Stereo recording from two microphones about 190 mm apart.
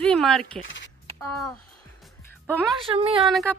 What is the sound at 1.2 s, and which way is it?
Speech, 15° left (ahead or behind).